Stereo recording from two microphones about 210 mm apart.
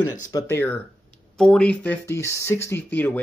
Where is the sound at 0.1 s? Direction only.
15° left (ahead or behind).